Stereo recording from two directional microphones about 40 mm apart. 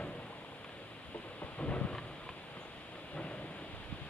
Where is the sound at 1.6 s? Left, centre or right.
Left.